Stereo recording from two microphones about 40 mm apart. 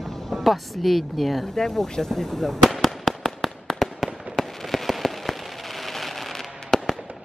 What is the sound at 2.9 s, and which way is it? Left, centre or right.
Fireworks, centre.